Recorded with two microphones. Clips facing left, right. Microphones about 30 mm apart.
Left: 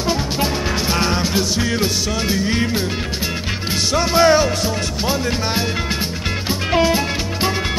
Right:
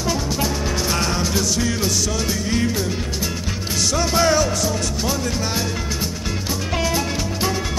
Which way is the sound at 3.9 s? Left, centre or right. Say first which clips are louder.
Left 5 dB; left.